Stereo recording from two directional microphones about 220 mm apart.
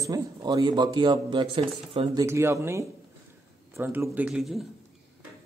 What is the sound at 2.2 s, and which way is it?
A man's voice, 10° right (ahead or behind).